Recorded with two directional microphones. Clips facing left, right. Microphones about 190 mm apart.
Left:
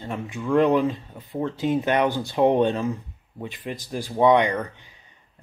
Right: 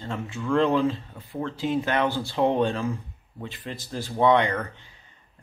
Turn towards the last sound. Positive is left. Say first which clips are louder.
# left 1 dB
turn(degrees=15)  # may be behind; listen again after turning